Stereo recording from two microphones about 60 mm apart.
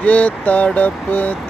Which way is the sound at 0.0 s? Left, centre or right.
Left.